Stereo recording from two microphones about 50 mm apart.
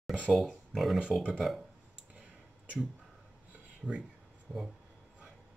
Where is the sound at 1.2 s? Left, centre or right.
Centre.